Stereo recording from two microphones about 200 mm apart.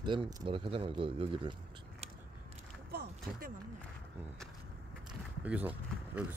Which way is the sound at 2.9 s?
50° right (ahead or behind).